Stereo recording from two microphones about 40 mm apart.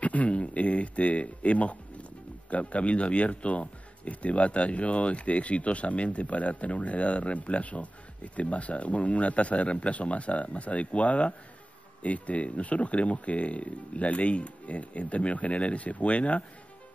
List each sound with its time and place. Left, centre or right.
0.0 s speech: left